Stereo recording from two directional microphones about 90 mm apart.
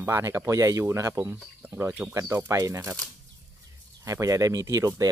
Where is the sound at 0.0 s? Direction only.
30° right (ahead or behind).